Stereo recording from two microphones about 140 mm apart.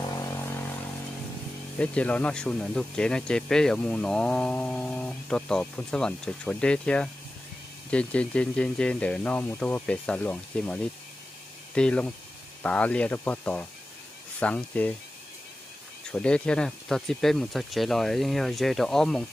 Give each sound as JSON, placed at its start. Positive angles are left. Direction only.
{"t": 0.1, "sound": "vehicle", "side_deg": 20}
{"t": 1.8, "sound": "speech", "side_deg": 10}
{"t": 16.1, "sound": "speech", "side_deg": 5}